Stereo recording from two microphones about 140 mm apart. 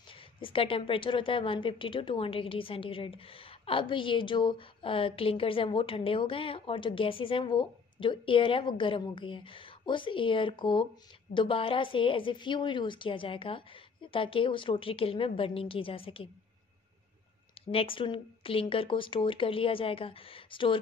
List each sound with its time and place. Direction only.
0.1 s a woman's voice: 40° left (ahead or behind)
17.6 s a woman's voice: 40° left (ahead or behind)